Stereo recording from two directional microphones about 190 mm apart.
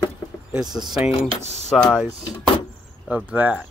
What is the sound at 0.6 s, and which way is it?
Speech, 20° right (ahead or behind).